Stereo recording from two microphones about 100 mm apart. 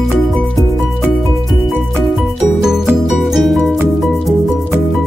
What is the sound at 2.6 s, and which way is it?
Music, 5° right (ahead or behind).